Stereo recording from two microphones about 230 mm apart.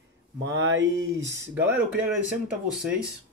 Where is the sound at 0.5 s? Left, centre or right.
Right.